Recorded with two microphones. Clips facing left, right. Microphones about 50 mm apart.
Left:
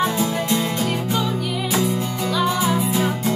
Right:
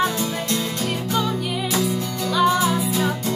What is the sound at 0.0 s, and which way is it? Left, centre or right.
Music, centre.